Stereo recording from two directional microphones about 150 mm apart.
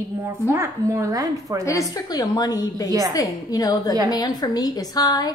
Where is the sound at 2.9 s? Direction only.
20° right (ahead or behind).